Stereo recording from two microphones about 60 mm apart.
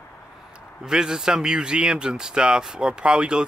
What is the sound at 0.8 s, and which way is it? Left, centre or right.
Speech, centre.